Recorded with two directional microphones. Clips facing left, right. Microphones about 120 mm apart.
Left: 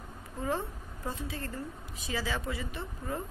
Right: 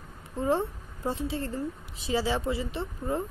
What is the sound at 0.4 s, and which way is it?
A woman's voice, 25° right (ahead or behind).